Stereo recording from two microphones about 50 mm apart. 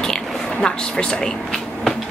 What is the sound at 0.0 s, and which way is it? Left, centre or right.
Speech, centre.